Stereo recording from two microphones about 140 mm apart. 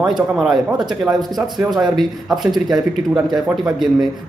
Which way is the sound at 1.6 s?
30° right (ahead or behind).